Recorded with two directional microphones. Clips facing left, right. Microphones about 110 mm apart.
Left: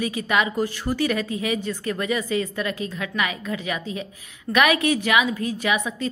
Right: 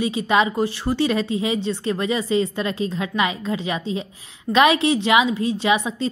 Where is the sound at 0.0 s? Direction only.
25° right (ahead or behind).